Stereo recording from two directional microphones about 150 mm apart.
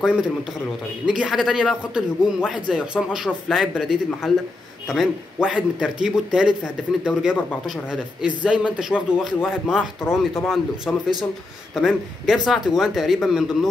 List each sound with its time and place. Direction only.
1.0 s speech: 5° right (ahead or behind)
10.0 s speech: 15° left (ahead or behind)
10.9 s speech: centre (ahead or behind)